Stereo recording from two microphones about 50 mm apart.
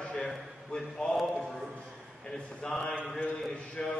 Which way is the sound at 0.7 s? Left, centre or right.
Centre.